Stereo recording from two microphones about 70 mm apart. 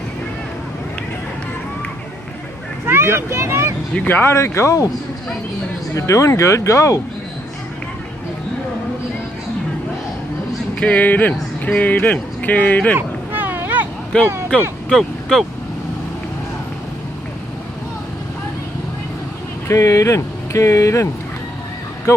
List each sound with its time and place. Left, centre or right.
2.9 s speech: right
4.1 s speech: left
5.9 s speech: left
10.8 s speech: left
12.9 s a sound: right
14.1 s speech: centre
14.9 s speech: centre
19.7 s speech: left